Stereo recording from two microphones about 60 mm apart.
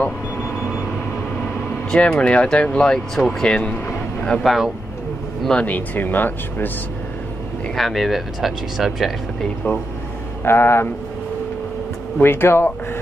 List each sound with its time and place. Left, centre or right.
1.9 s speech: centre
3.2 s speech: centre
3.4 s speech: centre
4.4 s speech: centre
5.5 s speech: left
7.7 s speech: centre
9.6 s speech: left
12.2 s speech: left